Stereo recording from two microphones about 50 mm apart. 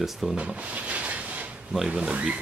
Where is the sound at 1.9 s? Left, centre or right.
Right.